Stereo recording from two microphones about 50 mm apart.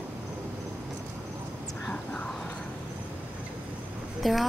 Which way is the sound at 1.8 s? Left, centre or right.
Left.